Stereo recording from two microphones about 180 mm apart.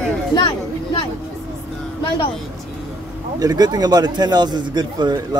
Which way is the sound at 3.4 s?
20° right (ahead or behind).